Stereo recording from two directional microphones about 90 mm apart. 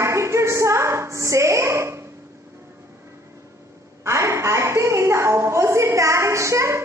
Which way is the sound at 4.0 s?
35° right (ahead or behind).